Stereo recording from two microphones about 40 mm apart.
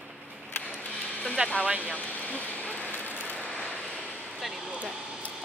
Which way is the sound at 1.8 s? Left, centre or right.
Left.